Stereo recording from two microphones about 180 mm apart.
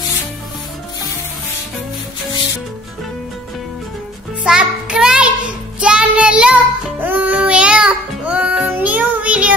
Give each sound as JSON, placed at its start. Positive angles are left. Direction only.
{"t": 4.5, "sound": "music", "side_deg": -5}
{"t": 5.8, "sound": "child singing", "side_deg": -5}